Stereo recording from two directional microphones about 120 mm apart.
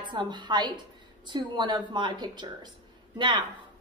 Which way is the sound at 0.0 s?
40° right (ahead or behind).